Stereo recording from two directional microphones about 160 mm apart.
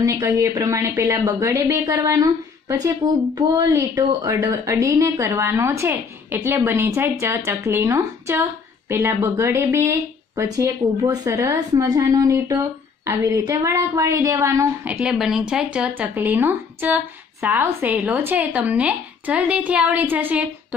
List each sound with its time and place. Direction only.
0.0 s speech: 20° right (ahead or behind)
3.3 s a woman's voice: 25° right (ahead or behind)